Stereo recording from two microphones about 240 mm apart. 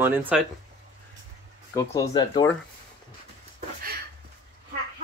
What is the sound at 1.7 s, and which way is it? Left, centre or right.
Speech, centre.